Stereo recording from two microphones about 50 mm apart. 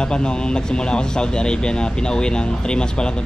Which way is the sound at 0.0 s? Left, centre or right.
Centre.